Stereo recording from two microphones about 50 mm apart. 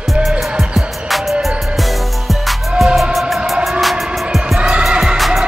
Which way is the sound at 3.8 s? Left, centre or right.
Centre.